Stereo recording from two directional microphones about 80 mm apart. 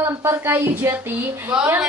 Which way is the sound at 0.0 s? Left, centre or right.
Right.